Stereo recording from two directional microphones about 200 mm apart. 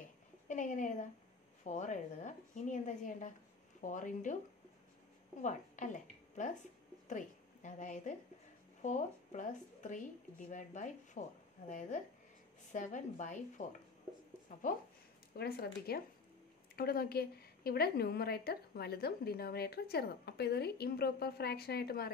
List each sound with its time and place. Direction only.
0.5 s a sound: 40° left (ahead or behind)
1.6 s a woman's voice: 40° left (ahead or behind)
5.4 s a woman's voice: 40° left (ahead or behind)
12.7 s speech: 40° left (ahead or behind)
15.3 s a woman's voice: 50° left (ahead or behind)